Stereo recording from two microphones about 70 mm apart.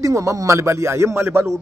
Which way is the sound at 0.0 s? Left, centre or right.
Right.